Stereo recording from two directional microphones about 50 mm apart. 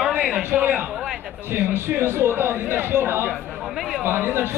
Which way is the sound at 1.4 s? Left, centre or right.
Right.